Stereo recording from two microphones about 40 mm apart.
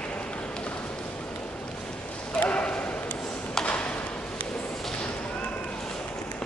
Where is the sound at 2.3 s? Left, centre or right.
Left.